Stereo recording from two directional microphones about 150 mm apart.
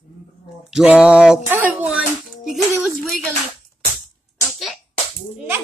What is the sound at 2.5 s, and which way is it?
Speech, centre (ahead or behind).